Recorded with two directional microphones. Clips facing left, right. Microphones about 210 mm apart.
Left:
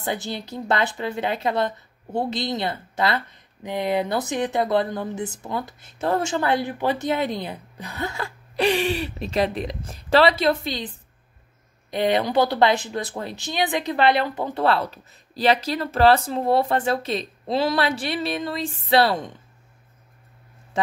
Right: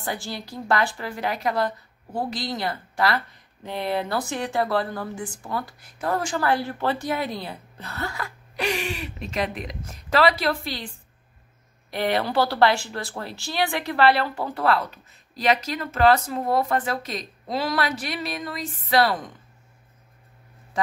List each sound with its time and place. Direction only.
0.0 s speech: 20° left (ahead or behind)
11.9 s speech: 20° left (ahead or behind)
20.7 s speech: 25° left (ahead or behind)